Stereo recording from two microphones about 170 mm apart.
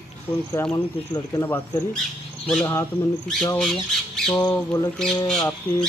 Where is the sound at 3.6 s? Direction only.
Centre (ahead or behind).